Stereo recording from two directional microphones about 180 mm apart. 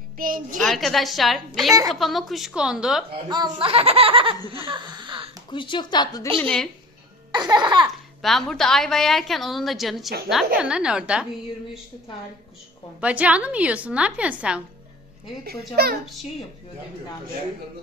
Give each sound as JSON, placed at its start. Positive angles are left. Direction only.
{"t": 0.2, "sound": "a woman's voice", "side_deg": -50}
{"t": 0.6, "sound": "a woman's voice", "side_deg": 0}
{"t": 3.3, "sound": "a child's voice", "side_deg": -25}
{"t": 4.5, "sound": "a sound", "side_deg": -30}
{"t": 5.5, "sound": "speech", "side_deg": 25}
{"t": 6.4, "sound": "a woman's voice", "side_deg": 5}
{"t": 7.3, "sound": "laughter", "side_deg": -25}
{"t": 8.2, "sound": "a woman's voice", "side_deg": 0}
{"t": 13.0, "sound": "a woman's voice", "side_deg": -5}
{"t": 15.4, "sound": "a child's voice", "side_deg": -60}